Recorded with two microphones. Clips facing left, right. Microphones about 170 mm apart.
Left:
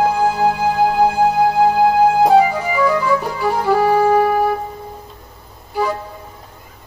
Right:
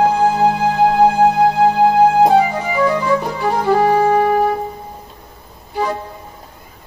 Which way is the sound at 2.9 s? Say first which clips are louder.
Right 1 dB; 15° right (ahead or behind).